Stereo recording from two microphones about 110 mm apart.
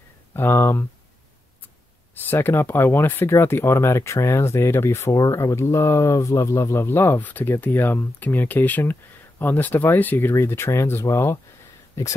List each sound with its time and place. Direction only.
0.3 s speech: 20° left (ahead or behind)
2.2 s speech: 20° left (ahead or behind)